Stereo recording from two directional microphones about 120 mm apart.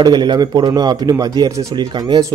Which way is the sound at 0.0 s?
35° right (ahead or behind).